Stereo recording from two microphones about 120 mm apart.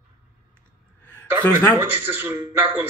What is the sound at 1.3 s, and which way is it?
Speech, 20° right (ahead or behind).